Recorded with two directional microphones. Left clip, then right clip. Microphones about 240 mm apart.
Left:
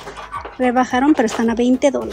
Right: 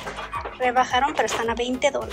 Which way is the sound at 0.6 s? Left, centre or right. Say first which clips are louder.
Left 3 dB; left.